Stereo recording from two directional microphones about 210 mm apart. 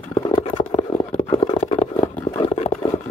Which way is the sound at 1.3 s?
30° left (ahead or behind).